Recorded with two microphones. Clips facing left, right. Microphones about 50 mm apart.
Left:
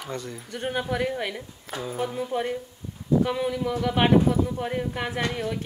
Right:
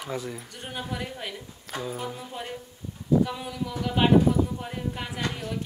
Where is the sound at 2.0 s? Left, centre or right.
Left.